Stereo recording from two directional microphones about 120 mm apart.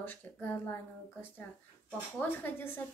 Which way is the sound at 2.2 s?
15° left (ahead or behind).